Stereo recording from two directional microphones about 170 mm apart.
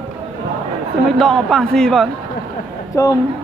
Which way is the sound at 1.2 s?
Centre (ahead or behind).